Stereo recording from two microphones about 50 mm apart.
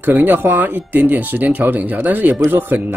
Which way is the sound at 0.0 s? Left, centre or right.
Right.